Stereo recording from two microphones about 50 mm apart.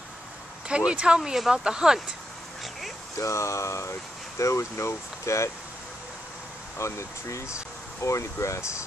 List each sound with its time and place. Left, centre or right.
0.7 s speech: centre
3.2 s speech: left
6.8 s speech: left